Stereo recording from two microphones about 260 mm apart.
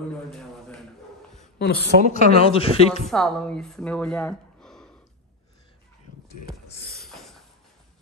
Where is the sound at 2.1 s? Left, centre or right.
Left.